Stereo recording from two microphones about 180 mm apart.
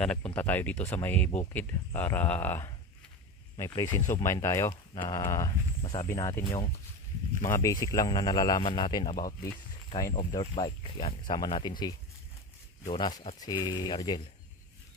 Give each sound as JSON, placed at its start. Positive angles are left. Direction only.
{"t": 0.0, "sound": "speech", "side_deg": 5}
{"t": 5.8, "sound": "speech", "side_deg": 30}
{"t": 6.0, "sound": "speech", "side_deg": 15}